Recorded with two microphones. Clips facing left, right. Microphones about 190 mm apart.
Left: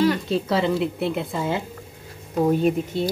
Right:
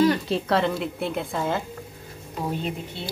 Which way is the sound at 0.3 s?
Centre (ahead or behind).